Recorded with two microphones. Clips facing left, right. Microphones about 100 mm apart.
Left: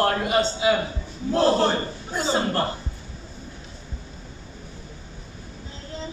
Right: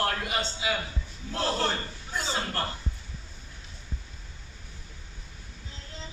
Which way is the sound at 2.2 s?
35° left (ahead or behind).